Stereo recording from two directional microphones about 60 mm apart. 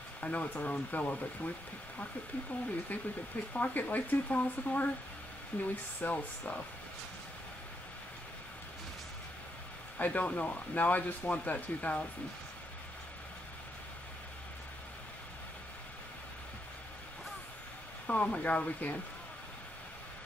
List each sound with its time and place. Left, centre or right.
0.2 s speech: left
2.9 s speech: left
9.9 s speech: left
18.0 s speech: left